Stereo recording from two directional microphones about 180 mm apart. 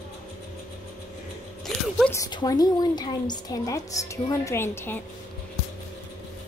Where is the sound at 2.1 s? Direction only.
20° left (ahead or behind).